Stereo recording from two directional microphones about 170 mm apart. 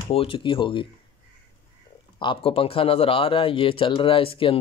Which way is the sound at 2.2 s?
30° left (ahead or behind).